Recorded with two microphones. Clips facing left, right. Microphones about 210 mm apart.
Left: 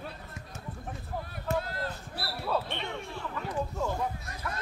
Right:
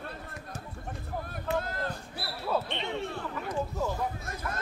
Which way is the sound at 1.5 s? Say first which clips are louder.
Even; 45° left (ahead or behind).